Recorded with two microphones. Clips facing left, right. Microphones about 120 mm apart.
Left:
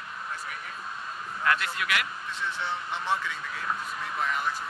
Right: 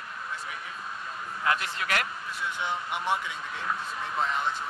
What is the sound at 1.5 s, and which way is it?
Speech, 25° right (ahead or behind).